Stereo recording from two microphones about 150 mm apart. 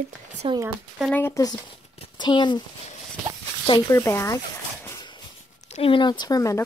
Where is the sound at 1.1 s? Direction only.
20° left (ahead or behind).